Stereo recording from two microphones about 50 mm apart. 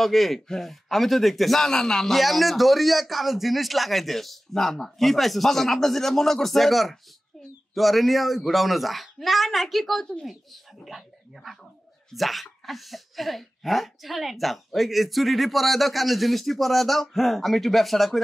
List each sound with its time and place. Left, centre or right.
0.0 s a man's voice: centre